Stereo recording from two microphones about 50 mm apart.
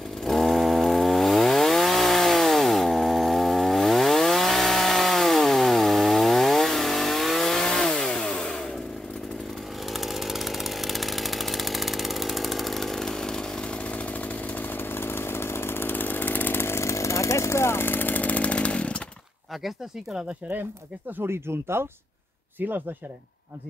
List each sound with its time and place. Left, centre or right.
0.2 s chainsaw: centre
9.8 s chainsaw: centre; by 16.6 s left
16.6 s chainsaw: left
17.8 s chainsaw: left
21.2 s speech: right